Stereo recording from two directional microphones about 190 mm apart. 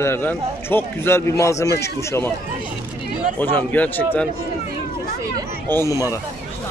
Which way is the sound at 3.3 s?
10° left (ahead or behind).